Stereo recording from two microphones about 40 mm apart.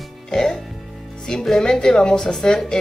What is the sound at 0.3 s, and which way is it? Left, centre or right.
Speech, centre.